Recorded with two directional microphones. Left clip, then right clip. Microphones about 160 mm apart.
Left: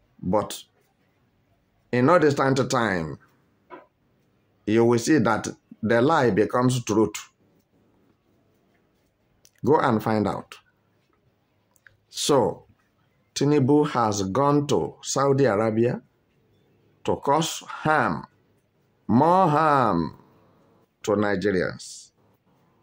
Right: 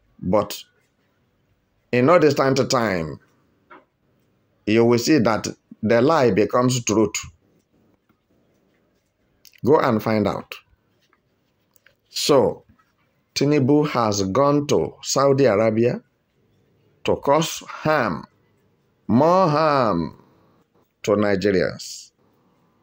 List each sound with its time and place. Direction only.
0.3 s speech: 10° right (ahead or behind)
1.9 s speech: 10° right (ahead or behind)
4.6 s speech: 10° right (ahead or behind)
9.4 s speech: 10° right (ahead or behind)
11.8 s clicking: 15° right (ahead or behind)
13.3 s speech: 10° right (ahead or behind)
17.0 s speech: 10° right (ahead or behind)
21.0 s speech: 15° right (ahead or behind)